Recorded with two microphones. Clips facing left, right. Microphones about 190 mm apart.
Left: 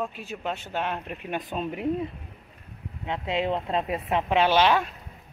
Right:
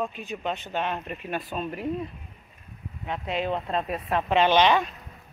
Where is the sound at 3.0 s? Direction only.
25° left (ahead or behind).